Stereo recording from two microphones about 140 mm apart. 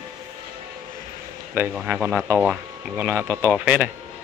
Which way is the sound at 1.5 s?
15° right (ahead or behind).